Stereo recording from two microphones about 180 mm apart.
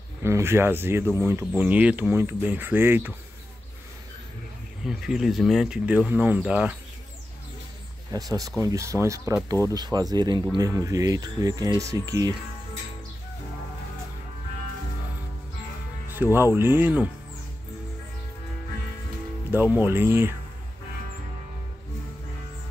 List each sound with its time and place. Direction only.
0.2 s speech: 15° right (ahead or behind)
4.8 s speech: centre (ahead or behind)
8.1 s speech: 20° right (ahead or behind)
16.1 s speech: 10° right (ahead or behind)
19.5 s speech: 10° right (ahead or behind)